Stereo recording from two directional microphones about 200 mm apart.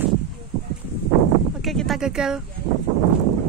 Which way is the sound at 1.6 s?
Centre (ahead or behind).